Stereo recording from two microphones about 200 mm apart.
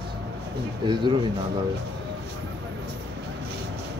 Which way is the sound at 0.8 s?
25° right (ahead or behind).